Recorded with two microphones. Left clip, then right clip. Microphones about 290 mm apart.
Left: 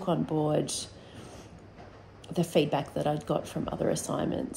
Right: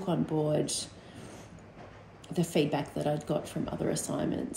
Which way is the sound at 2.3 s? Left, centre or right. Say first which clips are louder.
Left 3 dB; centre.